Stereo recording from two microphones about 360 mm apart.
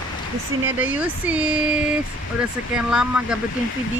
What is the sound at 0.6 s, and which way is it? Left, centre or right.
Speech, centre.